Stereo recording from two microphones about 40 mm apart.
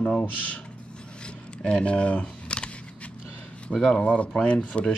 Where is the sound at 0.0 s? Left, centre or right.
Left.